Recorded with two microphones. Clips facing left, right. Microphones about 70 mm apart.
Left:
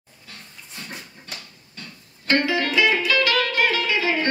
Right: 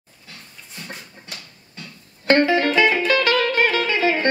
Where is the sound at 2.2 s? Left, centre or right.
Right.